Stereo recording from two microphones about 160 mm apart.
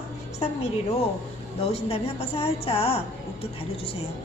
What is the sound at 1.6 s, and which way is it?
A woman's voice, 40° left (ahead or behind).